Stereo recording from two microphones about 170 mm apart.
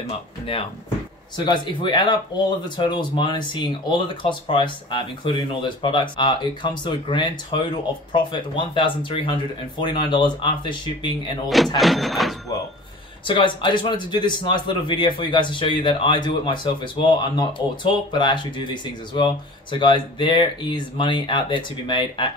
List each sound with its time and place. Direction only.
1.3 s speech: 25° left (ahead or behind)
11.4 s speech: centre (ahead or behind)
13.3 s speech: 30° left (ahead or behind)